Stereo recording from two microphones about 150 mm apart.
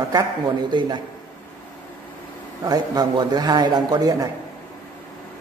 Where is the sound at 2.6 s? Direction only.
25° right (ahead or behind).